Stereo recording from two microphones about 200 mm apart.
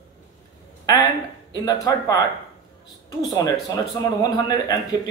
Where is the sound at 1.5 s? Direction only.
20° left (ahead or behind).